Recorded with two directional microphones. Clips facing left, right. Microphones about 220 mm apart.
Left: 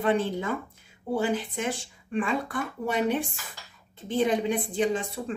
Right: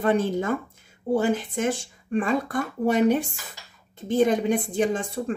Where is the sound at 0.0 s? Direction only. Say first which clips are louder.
Right 3 dB; 45° right (ahead or behind).